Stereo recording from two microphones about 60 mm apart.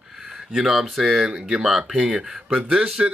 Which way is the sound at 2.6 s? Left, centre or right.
Centre.